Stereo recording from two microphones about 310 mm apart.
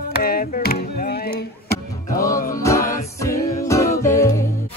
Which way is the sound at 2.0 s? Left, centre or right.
Centre.